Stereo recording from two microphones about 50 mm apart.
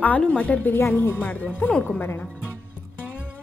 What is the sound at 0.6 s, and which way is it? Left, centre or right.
Speech, left.